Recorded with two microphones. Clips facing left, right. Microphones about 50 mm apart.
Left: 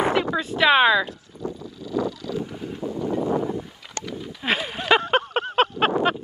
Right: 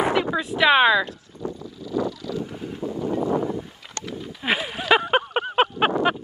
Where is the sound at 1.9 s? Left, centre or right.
Left.